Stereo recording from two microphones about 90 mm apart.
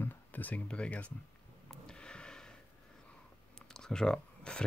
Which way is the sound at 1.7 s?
10° left (ahead or behind).